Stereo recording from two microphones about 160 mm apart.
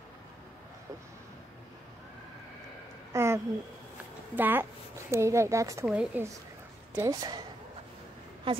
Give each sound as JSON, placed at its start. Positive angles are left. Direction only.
{"t": 3.1, "sound": "a sound", "side_deg": -15}
{"t": 4.4, "sound": "a woman's voice", "side_deg": -15}
{"t": 5.9, "sound": "a woman's voice", "side_deg": -5}
{"t": 7.0, "sound": "a woman's voice", "side_deg": -25}
{"t": 8.5, "sound": "a woman's voice", "side_deg": -30}